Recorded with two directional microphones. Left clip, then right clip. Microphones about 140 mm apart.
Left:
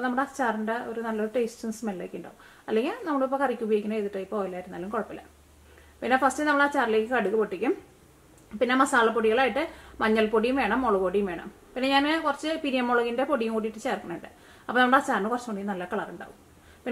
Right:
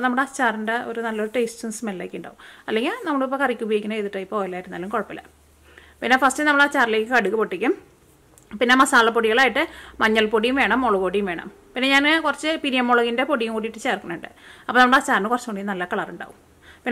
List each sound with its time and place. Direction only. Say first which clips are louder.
0.0 s a woman's voice: right 6 dB; 35° right (ahead or behind)